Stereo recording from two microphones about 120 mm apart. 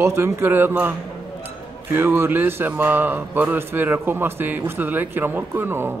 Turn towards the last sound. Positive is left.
turn(degrees=-20)  # may be behind; listen again after turning